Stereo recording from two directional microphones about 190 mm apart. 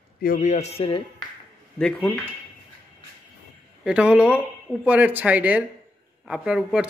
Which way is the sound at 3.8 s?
5° right (ahead or behind).